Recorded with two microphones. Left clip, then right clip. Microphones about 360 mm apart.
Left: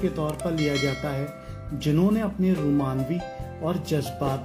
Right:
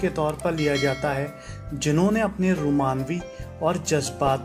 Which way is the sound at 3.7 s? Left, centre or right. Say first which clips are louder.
Right 5 dB; right.